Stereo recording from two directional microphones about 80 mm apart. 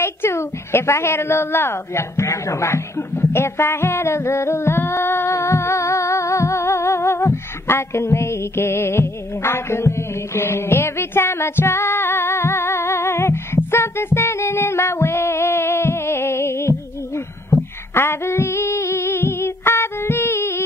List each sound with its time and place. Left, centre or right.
0.0 s a woman's voice: left
13.6 s music: left
17.9 s music: left